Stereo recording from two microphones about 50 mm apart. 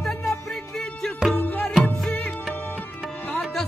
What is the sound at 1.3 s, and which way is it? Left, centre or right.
Music, centre.